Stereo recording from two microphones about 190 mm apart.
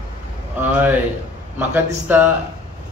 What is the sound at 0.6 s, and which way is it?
Speech, 10° right (ahead or behind).